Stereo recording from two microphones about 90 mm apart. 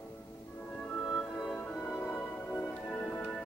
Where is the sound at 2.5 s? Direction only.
20° left (ahead or behind).